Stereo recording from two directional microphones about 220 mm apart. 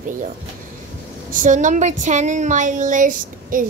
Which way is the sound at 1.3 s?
35° right (ahead or behind).